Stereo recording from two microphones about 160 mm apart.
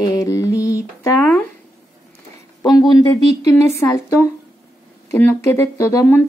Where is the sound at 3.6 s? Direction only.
20° left (ahead or behind).